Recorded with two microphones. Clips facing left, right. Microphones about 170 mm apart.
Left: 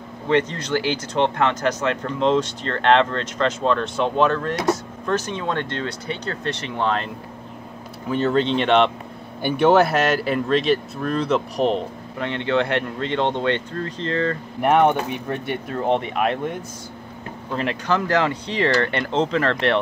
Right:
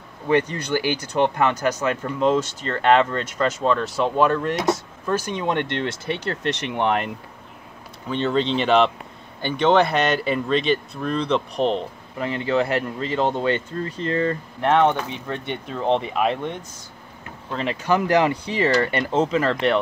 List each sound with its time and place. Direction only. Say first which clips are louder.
0.3 s speech: even; 10° right (ahead or behind)
8.1 s speech: left 2 dB; centre (ahead or behind)
9.4 s speech: left 2 dB; 10° left (ahead or behind); by 14.4 s 10° right (ahead or behind)
14.6 s speech: left 2 dB; 10° left (ahead or behind)
17.8 s speech: right 3 dB; 15° right (ahead or behind)